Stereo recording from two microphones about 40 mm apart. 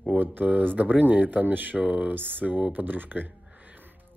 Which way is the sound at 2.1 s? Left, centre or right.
Right.